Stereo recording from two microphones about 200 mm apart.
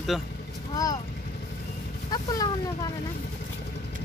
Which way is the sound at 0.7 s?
20° left (ahead or behind).